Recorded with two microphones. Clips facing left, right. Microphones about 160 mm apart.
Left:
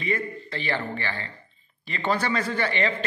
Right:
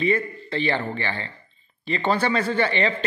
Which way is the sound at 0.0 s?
30° right (ahead or behind).